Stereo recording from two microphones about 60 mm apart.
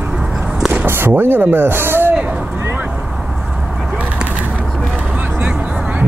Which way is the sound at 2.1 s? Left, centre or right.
Centre.